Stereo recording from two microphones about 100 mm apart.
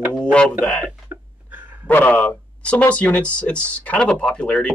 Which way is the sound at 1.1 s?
25° right (ahead or behind).